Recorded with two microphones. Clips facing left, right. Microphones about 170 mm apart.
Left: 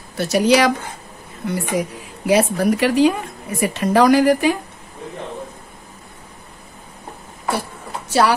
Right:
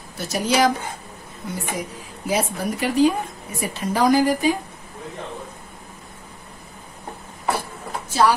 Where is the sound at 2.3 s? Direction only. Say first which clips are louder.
Left 8 dB; 75° left (ahead or behind).